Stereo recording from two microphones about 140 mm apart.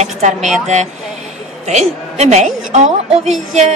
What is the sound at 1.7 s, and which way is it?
A woman's voice, 50° right (ahead or behind).